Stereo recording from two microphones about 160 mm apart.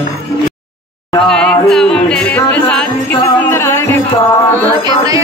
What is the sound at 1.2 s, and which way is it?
Music, 5° left (ahead or behind).